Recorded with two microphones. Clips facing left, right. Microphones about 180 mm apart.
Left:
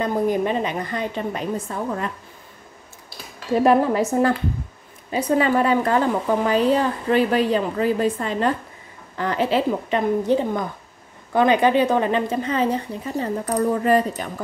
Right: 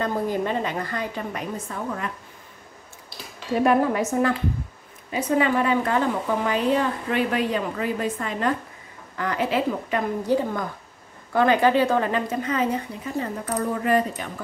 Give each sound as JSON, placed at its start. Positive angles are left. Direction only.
{"t": 0.0, "sound": "a woman's voice", "side_deg": 15}
{"t": 3.6, "sound": "a woman's voice", "side_deg": 30}